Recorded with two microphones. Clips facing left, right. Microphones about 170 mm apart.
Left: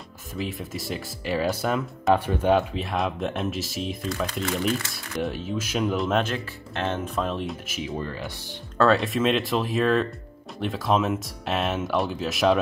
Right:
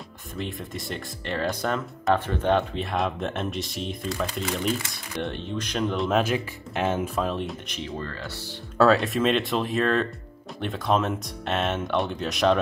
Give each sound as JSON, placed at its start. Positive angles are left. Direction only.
{"t": 0.4, "sound": "speech", "side_deg": 0}
{"t": 6.2, "sound": "speech", "side_deg": -10}
{"t": 7.9, "sound": "speech", "side_deg": 15}
{"t": 8.7, "sound": "speech", "side_deg": 0}